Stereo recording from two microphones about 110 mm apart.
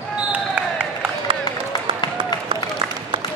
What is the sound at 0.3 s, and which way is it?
Basketball bounce, 15° right (ahead or behind).